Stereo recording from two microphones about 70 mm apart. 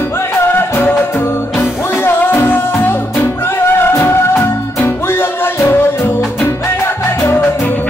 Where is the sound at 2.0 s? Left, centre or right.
Left.